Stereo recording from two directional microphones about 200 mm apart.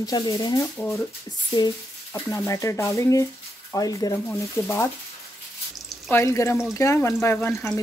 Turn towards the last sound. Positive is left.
turn(degrees=10)  # may be behind; listen again after turning